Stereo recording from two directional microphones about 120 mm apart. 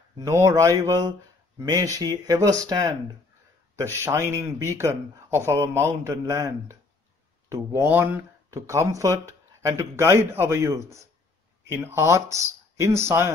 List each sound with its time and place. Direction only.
0.2 s speech: 25° right (ahead or behind)
8.5 s speech: 25° right (ahead or behind)